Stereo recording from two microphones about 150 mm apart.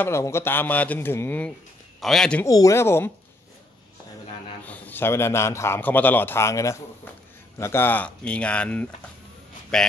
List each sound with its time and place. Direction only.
0.0 s a man's voice: 15° left (ahead or behind)
2.0 s speech: centre (ahead or behind)
2.4 s a man's voice: 20° left (ahead or behind)
4.6 s a man's voice: 10° left (ahead or behind)